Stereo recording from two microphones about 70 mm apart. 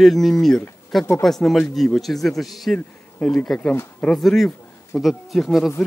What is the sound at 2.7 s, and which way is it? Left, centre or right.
Speech, centre.